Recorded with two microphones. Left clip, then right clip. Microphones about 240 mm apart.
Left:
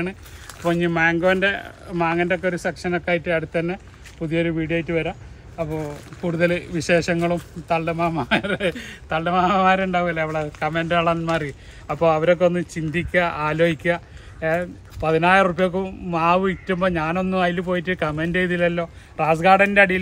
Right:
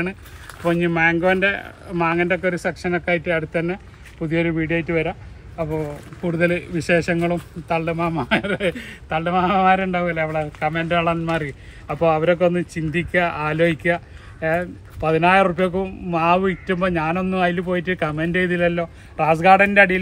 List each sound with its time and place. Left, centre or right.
0.0 s speech: centre